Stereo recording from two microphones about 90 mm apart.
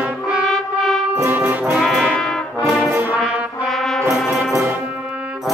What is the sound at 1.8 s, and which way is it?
Brass instrument, centre (ahead or behind).